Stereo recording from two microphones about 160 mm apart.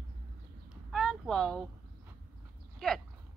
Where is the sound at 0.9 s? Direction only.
Centre (ahead or behind).